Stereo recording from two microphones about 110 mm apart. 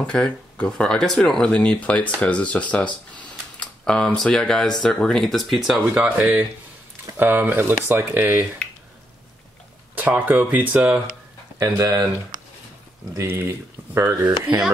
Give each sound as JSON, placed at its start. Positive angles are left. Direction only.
{"t": 0.0, "sound": "speech", "side_deg": 5}
{"t": 5.9, "sound": "speech", "side_deg": -15}
{"t": 9.9, "sound": "speech", "side_deg": -15}
{"t": 11.5, "sound": "speech", "side_deg": -35}
{"t": 13.1, "sound": "speech", "side_deg": -20}